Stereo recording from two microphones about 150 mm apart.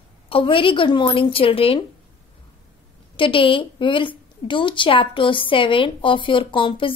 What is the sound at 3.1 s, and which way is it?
A woman's voice, 35° left (ahead or behind).